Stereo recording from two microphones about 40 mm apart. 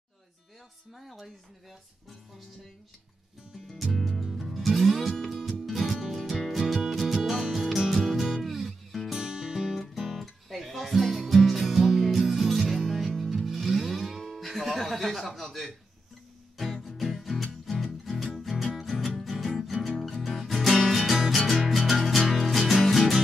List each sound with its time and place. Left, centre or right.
0.9 s speech: centre
3.6 s music: centre
9.1 s music: centre
9.8 s music: centre